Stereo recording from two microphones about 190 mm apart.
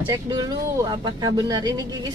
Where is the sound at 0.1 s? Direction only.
20° right (ahead or behind).